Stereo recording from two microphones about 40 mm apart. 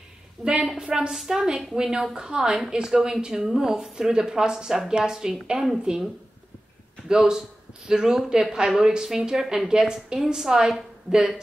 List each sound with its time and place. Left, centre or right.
0.4 s a woman's voice: centre
1.1 s speech: centre
7.1 s a man's voice: centre